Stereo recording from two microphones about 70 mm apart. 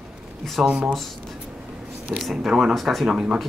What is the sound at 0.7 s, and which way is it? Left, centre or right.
Speech, centre.